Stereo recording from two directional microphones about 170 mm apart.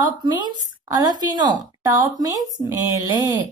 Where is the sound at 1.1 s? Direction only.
25° right (ahead or behind).